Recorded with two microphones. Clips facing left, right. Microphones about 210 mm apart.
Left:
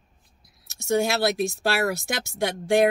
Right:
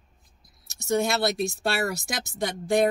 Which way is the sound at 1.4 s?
Centre (ahead or behind).